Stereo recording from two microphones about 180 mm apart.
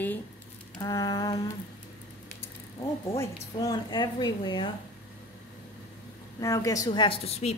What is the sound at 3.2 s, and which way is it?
A woman's voice, 20° left (ahead or behind).